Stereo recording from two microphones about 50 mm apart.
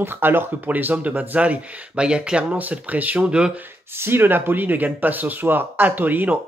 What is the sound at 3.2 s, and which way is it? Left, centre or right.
Speech, centre.